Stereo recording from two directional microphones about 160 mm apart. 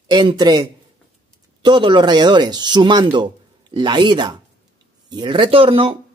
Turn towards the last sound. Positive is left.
turn(degrees=-35)  # may be behind; listen again after turning